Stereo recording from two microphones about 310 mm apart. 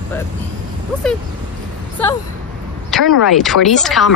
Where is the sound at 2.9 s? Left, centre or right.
Centre.